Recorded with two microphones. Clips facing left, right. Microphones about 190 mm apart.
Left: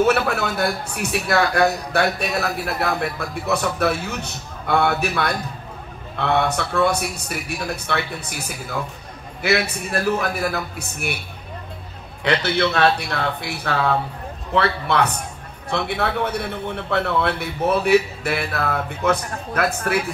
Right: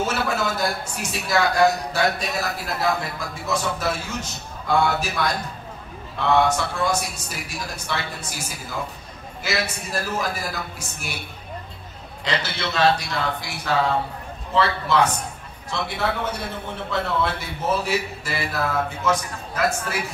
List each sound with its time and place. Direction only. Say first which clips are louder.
0.0 s a man's voice: left 5 dB; 60° left (ahead or behind)
12.2 s a man's voice: left 8 dB; 60° left (ahead or behind)